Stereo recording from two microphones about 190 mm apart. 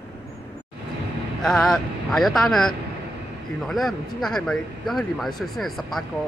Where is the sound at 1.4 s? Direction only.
Centre (ahead or behind).